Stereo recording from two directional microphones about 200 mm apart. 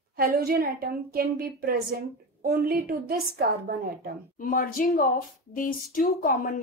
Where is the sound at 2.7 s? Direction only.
50° right (ahead or behind).